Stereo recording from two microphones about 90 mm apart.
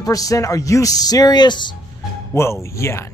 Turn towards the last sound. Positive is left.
turn(degrees=30)  # may be behind; listen again after turning